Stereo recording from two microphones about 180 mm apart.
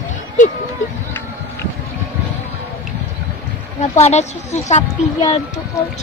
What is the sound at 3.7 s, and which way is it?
Speech, 40° left (ahead or behind).